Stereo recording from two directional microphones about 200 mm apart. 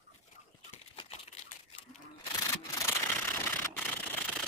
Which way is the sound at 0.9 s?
30° left (ahead or behind).